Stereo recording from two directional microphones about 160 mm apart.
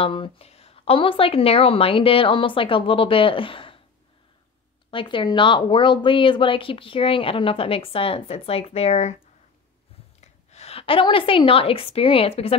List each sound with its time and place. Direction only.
0.0 s speech: 35° left (ahead or behind)
4.9 s speech: 30° left (ahead or behind)
10.2 s a woman's voice: 40° left (ahead or behind)